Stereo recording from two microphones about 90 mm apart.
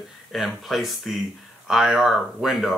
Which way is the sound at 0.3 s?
Centre (ahead or behind).